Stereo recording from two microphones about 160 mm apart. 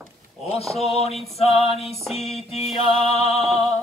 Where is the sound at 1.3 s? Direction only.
40° left (ahead or behind).